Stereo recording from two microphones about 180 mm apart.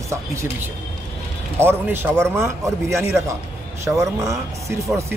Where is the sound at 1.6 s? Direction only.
10° right (ahead or behind).